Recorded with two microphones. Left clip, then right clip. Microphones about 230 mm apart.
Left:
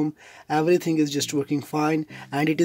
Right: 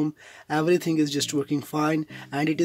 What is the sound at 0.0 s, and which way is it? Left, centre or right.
Speech, centre.